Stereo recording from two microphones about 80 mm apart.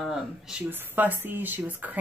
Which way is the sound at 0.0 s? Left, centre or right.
Centre.